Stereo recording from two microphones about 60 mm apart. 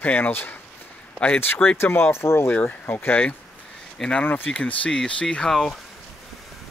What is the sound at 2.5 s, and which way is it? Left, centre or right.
Speech, left.